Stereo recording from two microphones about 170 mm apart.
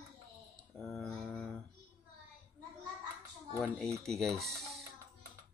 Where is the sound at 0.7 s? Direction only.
5° left (ahead or behind).